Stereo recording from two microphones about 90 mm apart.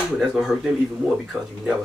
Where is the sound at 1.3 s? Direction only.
20° right (ahead or behind).